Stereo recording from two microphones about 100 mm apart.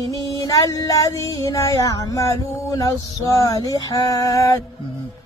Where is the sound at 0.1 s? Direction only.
35° left (ahead or behind).